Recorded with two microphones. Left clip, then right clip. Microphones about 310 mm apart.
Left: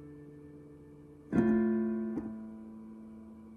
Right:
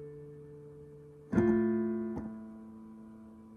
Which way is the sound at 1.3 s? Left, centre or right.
Right.